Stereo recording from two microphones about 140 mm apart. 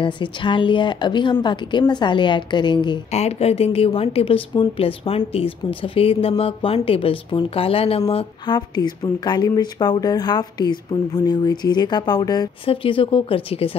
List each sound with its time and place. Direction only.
0.0 s a woman's voice: 35° left (ahead or behind)
3.1 s a woman's voice: 50° left (ahead or behind)
8.5 s speech: 30° left (ahead or behind)
12.6 s a woman's voice: 40° left (ahead or behind)